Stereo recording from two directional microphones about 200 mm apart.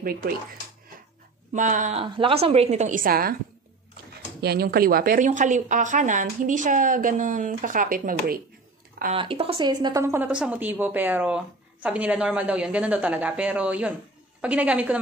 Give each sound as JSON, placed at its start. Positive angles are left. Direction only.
{"t": 1.5, "sound": "a woman's voice", "side_deg": -40}
{"t": 4.4, "sound": "a woman's voice", "side_deg": -50}
{"t": 9.1, "sound": "speech", "side_deg": -25}